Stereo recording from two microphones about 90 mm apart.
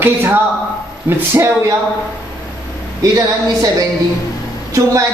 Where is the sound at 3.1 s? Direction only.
40° right (ahead or behind).